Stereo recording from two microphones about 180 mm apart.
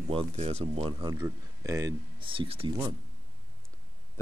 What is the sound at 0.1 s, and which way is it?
Speech, 35° right (ahead or behind).